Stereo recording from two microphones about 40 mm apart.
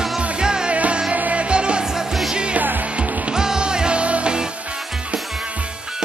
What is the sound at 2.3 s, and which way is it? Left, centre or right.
Music, right.